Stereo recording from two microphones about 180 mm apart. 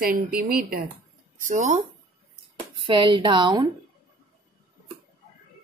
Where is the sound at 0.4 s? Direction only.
55° right (ahead or behind).